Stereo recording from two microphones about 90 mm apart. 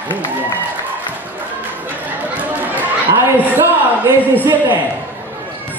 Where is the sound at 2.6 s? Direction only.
20° right (ahead or behind).